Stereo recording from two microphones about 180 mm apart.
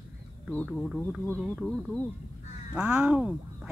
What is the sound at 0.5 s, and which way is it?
Speech, 5° left (ahead or behind).